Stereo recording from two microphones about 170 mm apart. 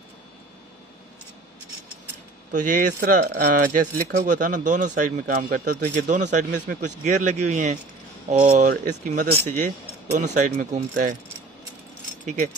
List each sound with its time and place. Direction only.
2.5 s speech: 50° right (ahead or behind)